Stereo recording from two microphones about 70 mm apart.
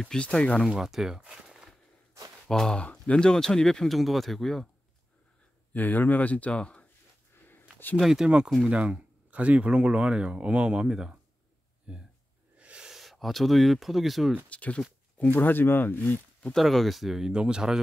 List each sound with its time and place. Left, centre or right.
0.0 s speech: centre
0.7 s speech: centre
2.4 s speech: centre
5.7 s speech: left
8.0 s speech: centre
8.6 s speech: centre
14.5 s speech: centre
16.5 s speech: centre